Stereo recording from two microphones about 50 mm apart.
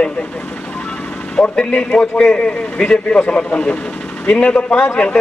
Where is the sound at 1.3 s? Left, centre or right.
Centre.